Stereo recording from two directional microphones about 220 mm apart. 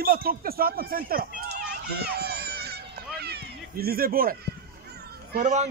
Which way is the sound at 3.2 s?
45° right (ahead or behind).